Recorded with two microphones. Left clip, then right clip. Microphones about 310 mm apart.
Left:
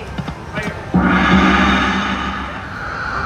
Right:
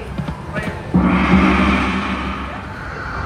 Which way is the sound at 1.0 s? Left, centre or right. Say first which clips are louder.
Left 3 dB; centre.